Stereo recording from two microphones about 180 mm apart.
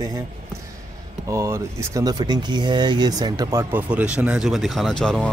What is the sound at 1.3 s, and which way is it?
Speech, 15° right (ahead or behind).